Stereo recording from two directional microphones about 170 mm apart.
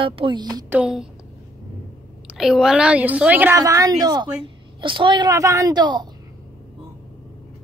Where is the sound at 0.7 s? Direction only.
5° right (ahead or behind).